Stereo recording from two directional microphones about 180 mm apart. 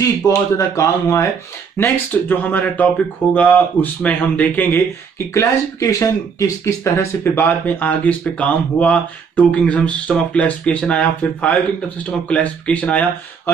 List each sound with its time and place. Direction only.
0.0 s speech: 20° left (ahead or behind)